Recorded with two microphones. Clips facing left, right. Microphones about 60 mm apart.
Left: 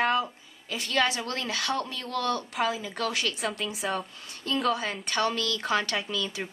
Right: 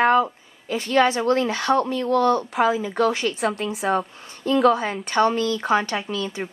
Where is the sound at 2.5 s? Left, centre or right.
Right.